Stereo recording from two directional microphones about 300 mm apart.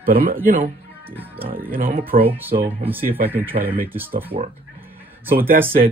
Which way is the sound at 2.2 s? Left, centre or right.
Centre.